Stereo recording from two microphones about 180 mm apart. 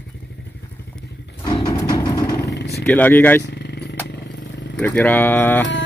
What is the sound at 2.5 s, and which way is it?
Vehicle, 65° left (ahead or behind).